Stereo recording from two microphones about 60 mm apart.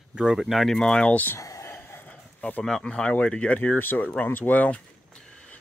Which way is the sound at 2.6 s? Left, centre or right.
Centre.